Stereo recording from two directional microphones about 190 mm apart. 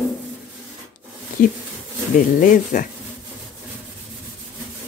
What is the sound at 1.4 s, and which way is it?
Speech, 45° left (ahead or behind).